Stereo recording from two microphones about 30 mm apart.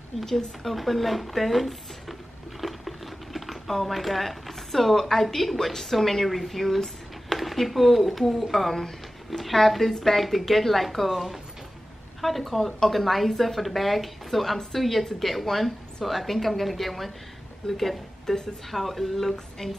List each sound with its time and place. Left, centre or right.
0.7 s speech: centre
2.6 s patter: centre
3.3 s speech: centre
19.6 s a woman's voice: centre